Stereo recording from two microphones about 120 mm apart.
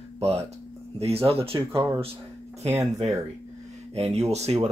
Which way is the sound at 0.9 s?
55° right (ahead or behind).